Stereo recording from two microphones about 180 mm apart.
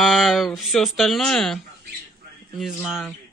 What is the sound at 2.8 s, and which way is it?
Speech, 5° right (ahead or behind).